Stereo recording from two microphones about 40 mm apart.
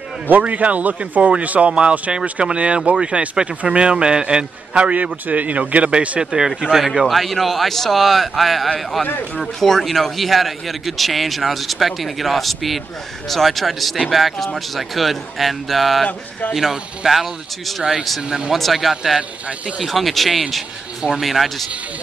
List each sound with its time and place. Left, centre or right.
0.4 s speech: right
1.7 s speech: right
4.9 s speech: right
6.3 s speech: centre
6.8 s a man's voice: centre
16.1 s speech: left
16.5 s a man's voice: centre